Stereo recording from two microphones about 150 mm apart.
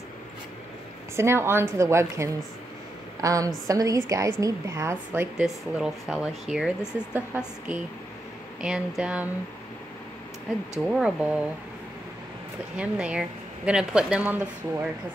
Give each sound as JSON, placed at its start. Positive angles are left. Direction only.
{"t": 1.1, "sound": "a woman's voice", "side_deg": -15}
{"t": 10.8, "sound": "speech", "side_deg": -5}
{"t": 12.7, "sound": "a woman's voice", "side_deg": -5}